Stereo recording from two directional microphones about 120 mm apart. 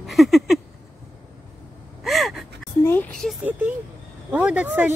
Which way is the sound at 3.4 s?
15° right (ahead or behind).